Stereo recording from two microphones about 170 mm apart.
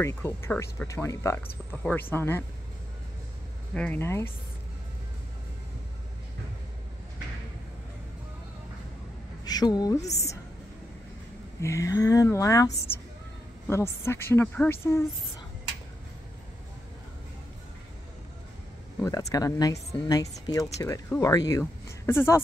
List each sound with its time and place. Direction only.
0.0 s speech: 15° left (ahead or behind)
3.7 s speech: 10° left (ahead or behind)
9.4 s a woman's voice: 25° left (ahead or behind)
11.6 s speech: 20° left (ahead or behind)
18.9 s speech: 20° left (ahead or behind)